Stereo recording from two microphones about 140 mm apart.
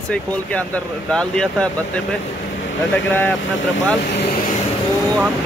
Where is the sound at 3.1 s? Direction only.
15° left (ahead or behind).